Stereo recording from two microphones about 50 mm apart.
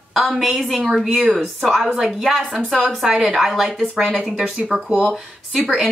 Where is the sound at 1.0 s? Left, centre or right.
Centre.